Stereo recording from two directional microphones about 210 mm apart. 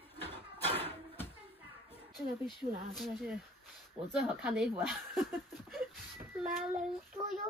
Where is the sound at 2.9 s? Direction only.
Centre (ahead or behind).